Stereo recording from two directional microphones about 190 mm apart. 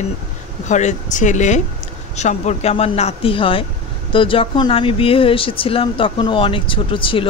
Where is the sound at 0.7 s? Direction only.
40° left (ahead or behind).